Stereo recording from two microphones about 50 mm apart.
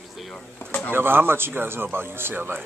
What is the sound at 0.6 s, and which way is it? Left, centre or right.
Music, left.